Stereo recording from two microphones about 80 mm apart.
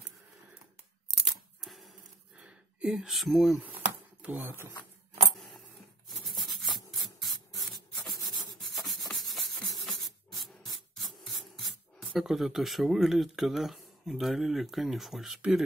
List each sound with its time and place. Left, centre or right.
1.2 s scissors: centre
2.3 s a sound: centre
4.3 s speech: right
6.0 s rub: centre